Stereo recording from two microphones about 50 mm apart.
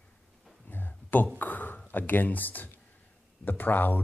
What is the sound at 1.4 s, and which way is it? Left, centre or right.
Speech, left.